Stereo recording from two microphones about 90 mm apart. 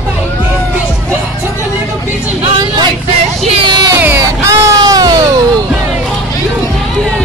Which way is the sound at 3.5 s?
65° right (ahead or behind).